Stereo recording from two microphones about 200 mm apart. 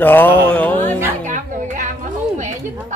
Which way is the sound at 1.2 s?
40° right (ahead or behind).